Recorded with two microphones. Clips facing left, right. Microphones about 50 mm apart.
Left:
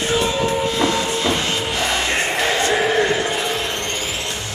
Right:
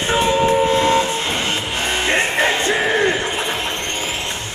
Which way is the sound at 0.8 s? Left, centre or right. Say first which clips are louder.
Right 3 dB; right.